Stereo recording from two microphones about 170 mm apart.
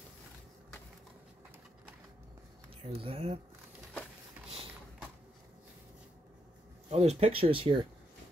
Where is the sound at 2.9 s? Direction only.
35° right (ahead or behind).